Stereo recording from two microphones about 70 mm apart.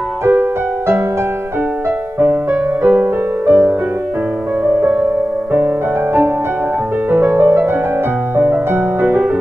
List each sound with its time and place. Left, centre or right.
0.2 s music: right
2.1 s music: right
7.1 s music: right